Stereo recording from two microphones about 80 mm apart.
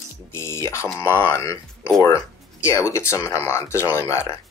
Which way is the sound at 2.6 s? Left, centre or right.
Left.